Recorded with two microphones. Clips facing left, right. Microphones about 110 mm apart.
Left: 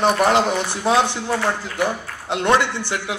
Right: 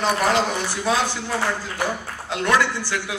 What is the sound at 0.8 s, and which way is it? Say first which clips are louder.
Speech: left 4 dB; 20° left (ahead or behind).